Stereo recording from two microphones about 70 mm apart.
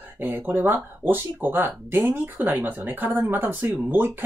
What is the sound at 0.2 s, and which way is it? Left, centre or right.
Speech, right.